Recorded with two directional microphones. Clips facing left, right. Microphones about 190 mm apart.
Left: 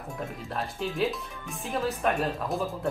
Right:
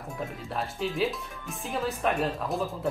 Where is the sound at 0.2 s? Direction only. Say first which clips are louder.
Right 1 dB; centre (ahead or behind).